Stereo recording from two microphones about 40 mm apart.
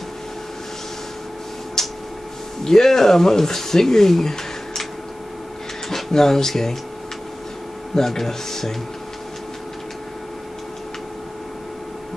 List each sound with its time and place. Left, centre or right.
1.8 s a sound: centre
2.6 s speech: centre
5.9 s speech: centre
7.9 s speech: centre